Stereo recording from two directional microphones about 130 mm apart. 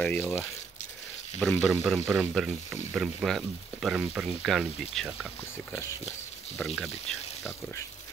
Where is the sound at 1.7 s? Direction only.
5° right (ahead or behind).